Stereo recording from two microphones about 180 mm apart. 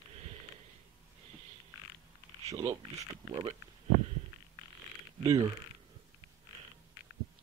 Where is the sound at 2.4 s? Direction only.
40° right (ahead or behind).